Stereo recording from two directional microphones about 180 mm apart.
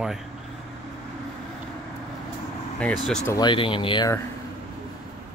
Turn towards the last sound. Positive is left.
turn(degrees=25)  # may be behind; listen again after turning